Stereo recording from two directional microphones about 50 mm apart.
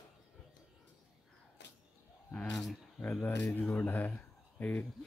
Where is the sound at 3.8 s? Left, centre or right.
Left.